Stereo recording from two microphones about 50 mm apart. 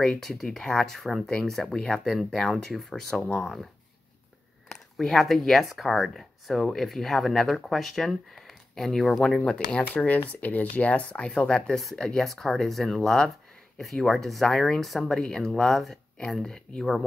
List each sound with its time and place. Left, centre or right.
0.2 s speech: centre
4.6 s speech: centre
9.5 s speech: centre
9.8 s speech: left
11.1 s speech: centre
11.7 s speech: centre